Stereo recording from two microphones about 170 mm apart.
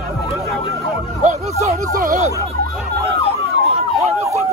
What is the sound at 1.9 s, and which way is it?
Speech, 55° right (ahead or behind).